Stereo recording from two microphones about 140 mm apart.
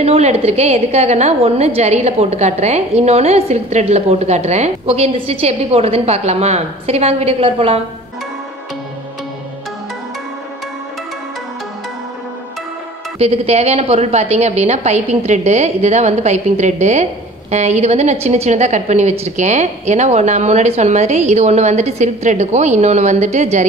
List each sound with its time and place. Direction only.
0.0 s a woman's voice: 50° right (ahead or behind)
13.2 s a woman's voice: 50° right (ahead or behind)